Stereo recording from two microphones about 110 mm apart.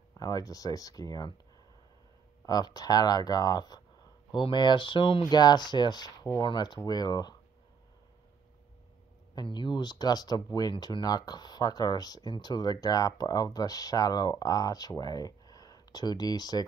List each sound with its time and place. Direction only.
0.2 s speech: 35° left (ahead or behind)
2.4 s speech: 35° left (ahead or behind)
5.3 s speech: 40° left (ahead or behind)
9.3 s speech: 40° left (ahead or behind)